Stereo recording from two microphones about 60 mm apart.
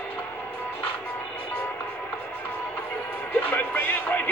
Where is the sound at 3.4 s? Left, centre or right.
Left.